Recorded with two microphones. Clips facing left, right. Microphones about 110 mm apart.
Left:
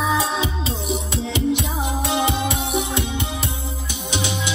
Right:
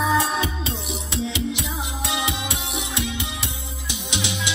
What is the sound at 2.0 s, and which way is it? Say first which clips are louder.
Music: left 5 dB; 40° left (ahead or behind).